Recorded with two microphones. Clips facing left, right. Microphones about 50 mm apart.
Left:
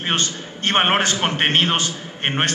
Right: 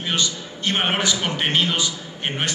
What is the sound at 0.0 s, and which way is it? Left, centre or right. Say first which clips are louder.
A man's voice: left 2 dB; left.